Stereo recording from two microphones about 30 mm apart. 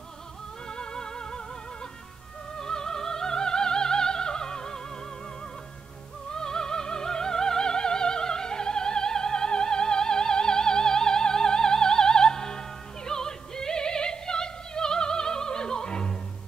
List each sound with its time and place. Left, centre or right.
0.7 s music: left
2.5 s opera: left
6.3 s opera: left